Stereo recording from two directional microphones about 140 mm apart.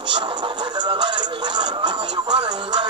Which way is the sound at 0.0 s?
35° right (ahead or behind).